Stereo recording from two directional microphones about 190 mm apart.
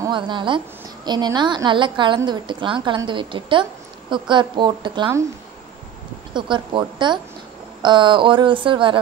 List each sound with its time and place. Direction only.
0.0 s a woman's voice: 25° right (ahead or behind)
6.3 s a woman's voice: 25° right (ahead or behind)